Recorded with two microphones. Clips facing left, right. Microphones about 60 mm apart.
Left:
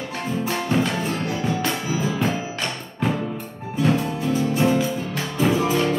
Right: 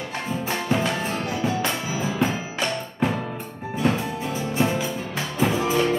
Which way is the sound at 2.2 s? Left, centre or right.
Centre.